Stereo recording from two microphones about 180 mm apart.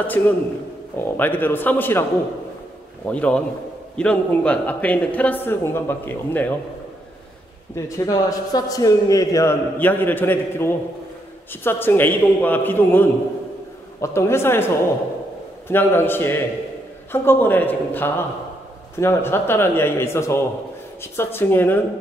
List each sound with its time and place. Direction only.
0.0 s a man's voice: 10° left (ahead or behind)
3.1 s a man's voice: 5° left (ahead or behind)
7.7 s a man's voice: 20° left (ahead or behind)
15.7 s a man's voice: 10° left (ahead or behind)